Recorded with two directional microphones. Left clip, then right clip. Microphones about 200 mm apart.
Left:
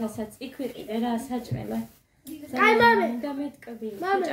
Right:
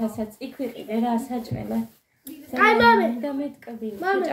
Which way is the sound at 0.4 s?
5° right (ahead or behind).